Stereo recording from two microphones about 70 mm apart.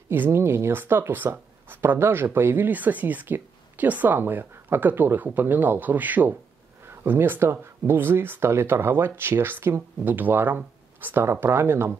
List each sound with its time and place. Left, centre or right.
0.1 s speech: right